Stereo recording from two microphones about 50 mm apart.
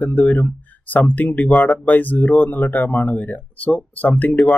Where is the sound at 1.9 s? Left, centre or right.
Left.